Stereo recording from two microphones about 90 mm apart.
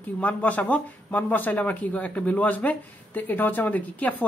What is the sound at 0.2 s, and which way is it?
A man's voice, 15° left (ahead or behind).